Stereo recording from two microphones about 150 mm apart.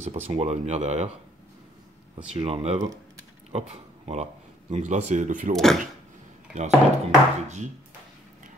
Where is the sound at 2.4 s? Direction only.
45° right (ahead or behind); by 5.5 s 60° right (ahead or behind).